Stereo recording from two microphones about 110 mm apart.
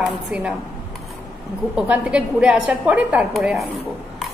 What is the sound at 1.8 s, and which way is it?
A woman's voice, 10° right (ahead or behind).